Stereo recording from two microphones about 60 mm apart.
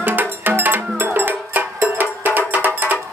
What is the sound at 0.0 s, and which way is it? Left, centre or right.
Music, right.